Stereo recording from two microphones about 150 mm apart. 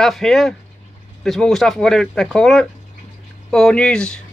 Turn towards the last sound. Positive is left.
turn(degrees=5)  # may be behind; listen again after turning